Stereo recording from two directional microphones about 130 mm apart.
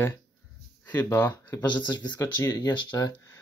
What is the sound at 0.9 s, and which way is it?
Speech, 30° left (ahead or behind).